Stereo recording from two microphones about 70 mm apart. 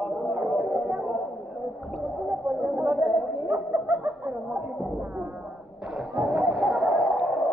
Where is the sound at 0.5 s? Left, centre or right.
Right.